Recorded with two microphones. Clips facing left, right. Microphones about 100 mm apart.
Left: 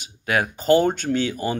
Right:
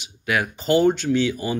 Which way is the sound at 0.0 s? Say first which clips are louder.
Left 1 dB; 35° left (ahead or behind).